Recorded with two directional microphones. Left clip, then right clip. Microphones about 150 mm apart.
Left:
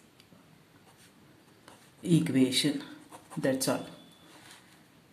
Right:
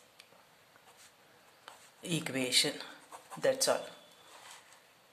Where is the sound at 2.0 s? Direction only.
35° right (ahead or behind).